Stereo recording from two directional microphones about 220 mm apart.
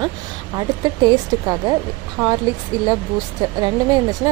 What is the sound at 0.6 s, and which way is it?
Speech, 20° right (ahead or behind).